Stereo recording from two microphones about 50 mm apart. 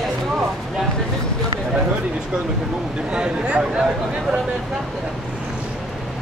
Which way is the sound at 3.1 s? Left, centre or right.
Centre.